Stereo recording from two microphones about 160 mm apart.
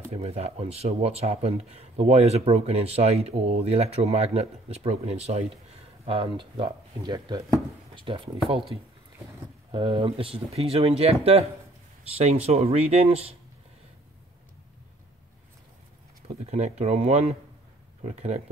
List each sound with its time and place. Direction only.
0.1 s speech: 40° right (ahead or behind)
9.7 s speech: 30° right (ahead or behind)
16.4 s speech: 45° right (ahead or behind)